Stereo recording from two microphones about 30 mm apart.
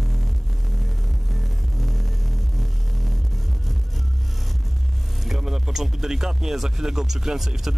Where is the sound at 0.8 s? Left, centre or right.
Centre.